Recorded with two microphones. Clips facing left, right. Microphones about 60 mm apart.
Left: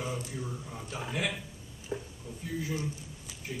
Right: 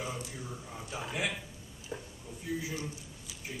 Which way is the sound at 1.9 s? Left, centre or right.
Centre.